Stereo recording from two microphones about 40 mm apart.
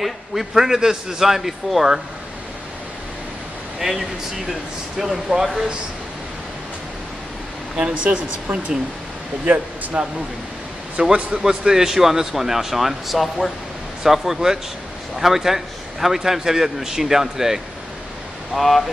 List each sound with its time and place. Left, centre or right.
0.0 s a man's voice: centre
4.9 s a man's voice: centre
7.7 s speech: right
9.9 s speech: right
11.4 s a man's voice: centre
18.5 s speech: centre